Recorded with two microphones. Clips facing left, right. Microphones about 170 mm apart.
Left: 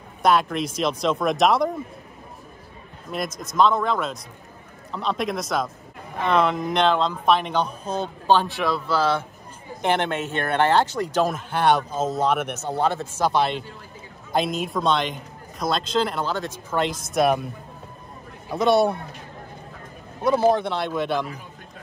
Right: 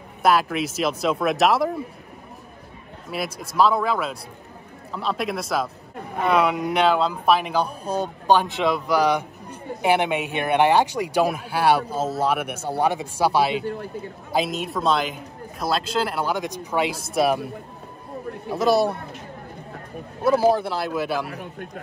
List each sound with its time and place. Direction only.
0.2 s a man's voice: 5° right (ahead or behind)
3.3 s a man's voice: 5° right (ahead or behind)
18.5 s a man's voice: centre (ahead or behind)
20.2 s a man's voice: 5° right (ahead or behind)
21.3 s a man's voice: 65° right (ahead or behind)